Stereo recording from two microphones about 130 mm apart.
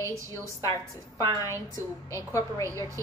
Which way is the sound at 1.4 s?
20° left (ahead or behind).